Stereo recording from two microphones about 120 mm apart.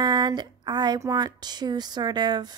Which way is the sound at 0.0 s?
35° right (ahead or behind).